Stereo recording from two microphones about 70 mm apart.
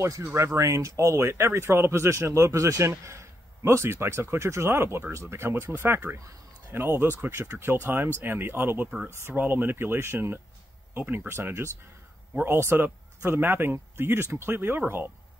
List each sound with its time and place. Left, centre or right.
0.2 s speech: right
0.6 s speech: right